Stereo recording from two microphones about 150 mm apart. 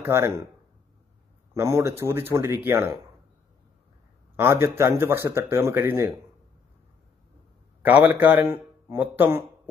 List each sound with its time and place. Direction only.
0.0 s speech: 20° right (ahead or behind)
1.5 s speech: 20° right (ahead or behind)
4.4 s speech: 15° right (ahead or behind)
8.1 s speech: 10° right (ahead or behind)